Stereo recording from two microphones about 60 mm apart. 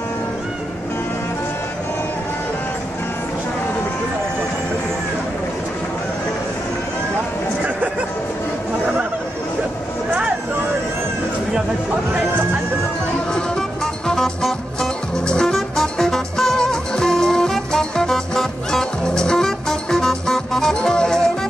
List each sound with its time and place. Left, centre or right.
13.3 s music: centre